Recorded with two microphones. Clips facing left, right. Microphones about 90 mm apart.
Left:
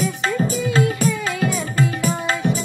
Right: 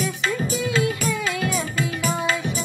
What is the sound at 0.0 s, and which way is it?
Music, 40° left (ahead or behind).